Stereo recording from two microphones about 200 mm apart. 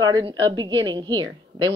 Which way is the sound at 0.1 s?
20° right (ahead or behind).